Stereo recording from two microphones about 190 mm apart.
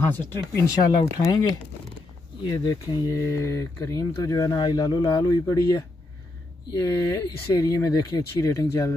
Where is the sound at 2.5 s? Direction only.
20° left (ahead or behind).